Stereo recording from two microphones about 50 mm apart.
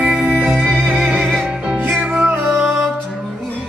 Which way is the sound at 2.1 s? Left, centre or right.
Right.